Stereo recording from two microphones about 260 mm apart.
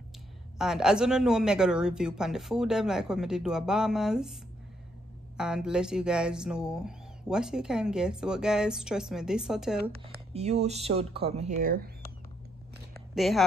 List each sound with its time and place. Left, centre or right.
0.6 s speech: centre
5.4 s speech: centre
10.3 s speech: right
11.5 s speech: right
13.1 s speech: centre